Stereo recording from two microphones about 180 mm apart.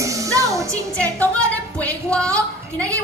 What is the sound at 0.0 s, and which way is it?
Music, 20° right (ahead or behind).